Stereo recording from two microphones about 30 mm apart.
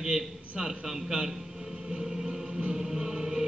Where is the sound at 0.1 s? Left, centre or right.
Right.